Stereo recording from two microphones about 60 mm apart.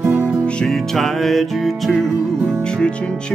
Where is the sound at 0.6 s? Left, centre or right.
Centre.